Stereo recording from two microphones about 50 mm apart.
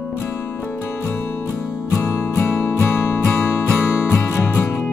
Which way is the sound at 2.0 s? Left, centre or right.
Left.